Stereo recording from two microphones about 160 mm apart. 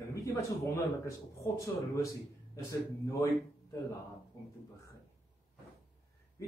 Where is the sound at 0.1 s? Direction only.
20° left (ahead or behind).